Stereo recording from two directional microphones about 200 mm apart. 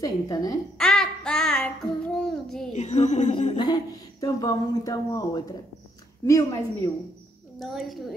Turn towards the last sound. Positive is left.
turn(degrees=0)  # may be behind; listen again after turning